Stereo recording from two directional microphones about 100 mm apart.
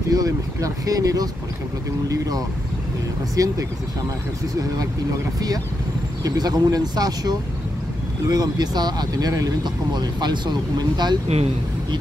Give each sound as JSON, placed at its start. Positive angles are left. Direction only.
{"t": 0.1, "sound": "speech", "side_deg": -35}
{"t": 6.2, "sound": "speech", "side_deg": -40}